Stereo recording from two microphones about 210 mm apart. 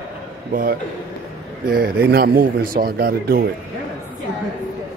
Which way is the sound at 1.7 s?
45° right (ahead or behind).